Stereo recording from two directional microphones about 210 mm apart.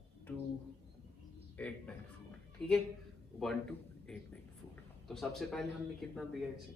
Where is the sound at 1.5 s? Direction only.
5° left (ahead or behind).